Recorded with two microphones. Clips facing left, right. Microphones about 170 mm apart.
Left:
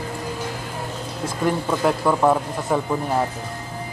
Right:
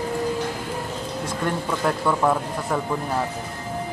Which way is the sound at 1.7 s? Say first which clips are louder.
Left 2 dB; 10° left (ahead or behind).